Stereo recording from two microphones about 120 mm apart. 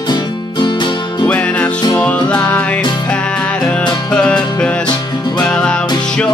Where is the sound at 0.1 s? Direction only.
40° left (ahead or behind).